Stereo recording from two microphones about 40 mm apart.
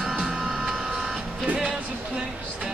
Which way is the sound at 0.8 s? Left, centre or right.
Centre.